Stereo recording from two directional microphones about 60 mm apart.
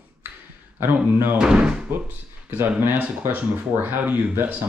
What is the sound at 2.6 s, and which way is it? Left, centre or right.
Speech, right.